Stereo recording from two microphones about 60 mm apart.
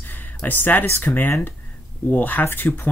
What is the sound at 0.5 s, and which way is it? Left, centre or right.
Speech, left.